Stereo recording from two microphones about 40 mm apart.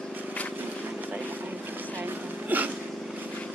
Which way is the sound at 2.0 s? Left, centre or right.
Right.